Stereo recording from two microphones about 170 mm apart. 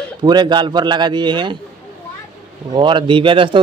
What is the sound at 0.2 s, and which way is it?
A man's voice, 25° right (ahead or behind).